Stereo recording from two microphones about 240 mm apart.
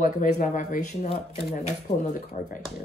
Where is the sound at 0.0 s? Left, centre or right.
Left.